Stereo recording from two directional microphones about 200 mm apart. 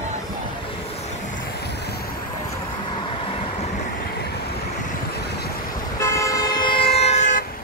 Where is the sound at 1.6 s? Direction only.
55° left (ahead or behind).